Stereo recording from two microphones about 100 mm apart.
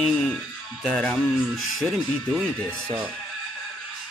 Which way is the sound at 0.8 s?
5° left (ahead or behind).